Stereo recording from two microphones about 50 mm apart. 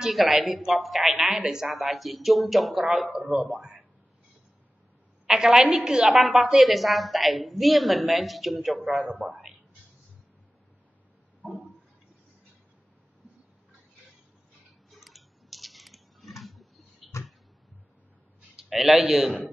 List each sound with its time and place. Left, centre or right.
0.1 s a woman's voice: centre
1.7 s a woman's voice: centre
3.1 s a man's voice: right
5.2 s a woman's voice: centre
6.1 s a woman's voice: centre
11.4 s a sound: centre
14.9 s a sound: centre
17.1 s a sound: left
18.6 s a man's voice: centre